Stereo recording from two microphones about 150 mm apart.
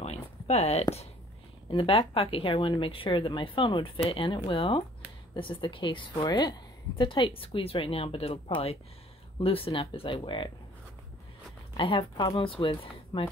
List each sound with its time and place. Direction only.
0.0 s a sound: 45° left (ahead or behind)
1.7 s speech: 35° left (ahead or behind)
11.7 s speech: 35° left (ahead or behind)